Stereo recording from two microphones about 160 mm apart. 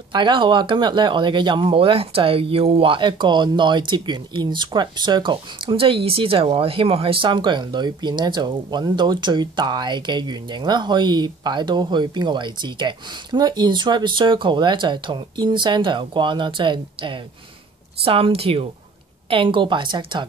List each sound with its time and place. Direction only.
0.1 s a woman's voice: 30° right (ahead or behind)